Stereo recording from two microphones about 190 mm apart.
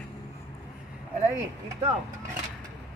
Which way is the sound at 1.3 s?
20° right (ahead or behind).